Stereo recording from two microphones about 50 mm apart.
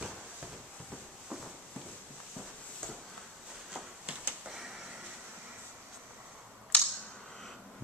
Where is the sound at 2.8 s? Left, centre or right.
Centre.